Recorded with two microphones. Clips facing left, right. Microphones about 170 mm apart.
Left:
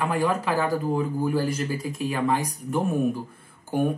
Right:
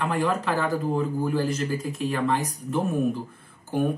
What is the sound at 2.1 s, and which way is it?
Speech, 10° left (ahead or behind).